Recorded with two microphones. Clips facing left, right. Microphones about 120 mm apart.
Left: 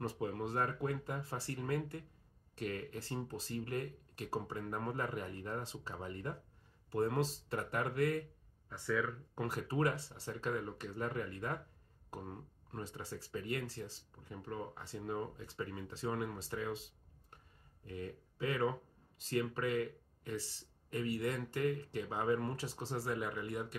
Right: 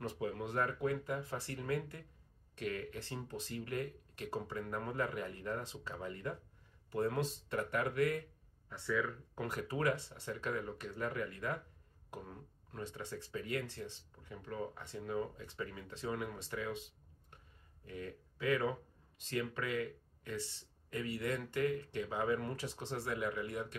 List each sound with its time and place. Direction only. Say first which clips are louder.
0.0 s speech: left 1 dB; 35° left (ahead or behind)
9.3 s speech: left 1 dB; 30° left (ahead or behind)
12.7 s speech: right 1 dB; 30° left (ahead or behind)
17.8 s speech: left 1 dB; 30° left (ahead or behind)